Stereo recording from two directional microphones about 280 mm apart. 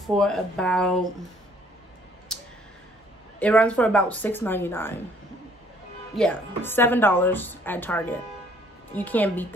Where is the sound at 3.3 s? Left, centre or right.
Centre.